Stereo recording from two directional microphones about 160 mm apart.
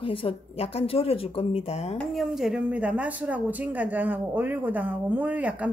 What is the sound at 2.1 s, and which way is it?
Speech, 5° right (ahead or behind).